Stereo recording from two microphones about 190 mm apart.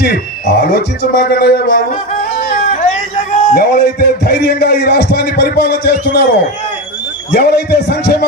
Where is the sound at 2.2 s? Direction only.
55° left (ahead or behind).